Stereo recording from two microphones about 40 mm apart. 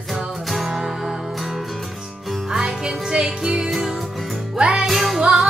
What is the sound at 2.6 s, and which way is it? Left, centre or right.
Music, right.